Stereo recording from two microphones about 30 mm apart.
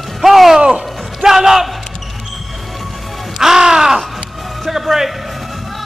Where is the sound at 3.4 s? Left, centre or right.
Centre.